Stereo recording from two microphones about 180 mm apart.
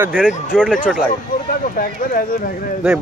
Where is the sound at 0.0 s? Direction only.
10° right (ahead or behind).